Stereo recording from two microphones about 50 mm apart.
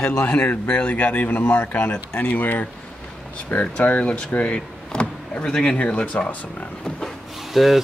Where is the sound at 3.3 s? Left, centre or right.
Left.